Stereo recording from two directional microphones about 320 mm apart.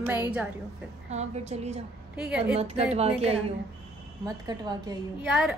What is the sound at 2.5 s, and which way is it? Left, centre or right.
A woman's voice, centre.